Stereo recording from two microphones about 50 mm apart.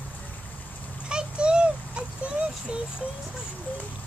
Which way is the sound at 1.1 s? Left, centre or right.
Right.